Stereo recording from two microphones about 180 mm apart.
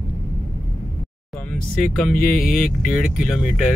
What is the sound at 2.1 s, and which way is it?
Speech, 55° left (ahead or behind).